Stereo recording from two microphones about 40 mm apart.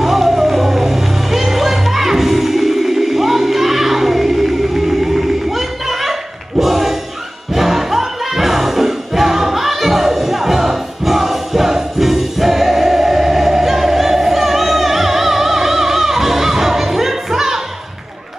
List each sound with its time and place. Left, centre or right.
0.0 s music: centre
6.6 s a sound: centre
7.5 s music: centre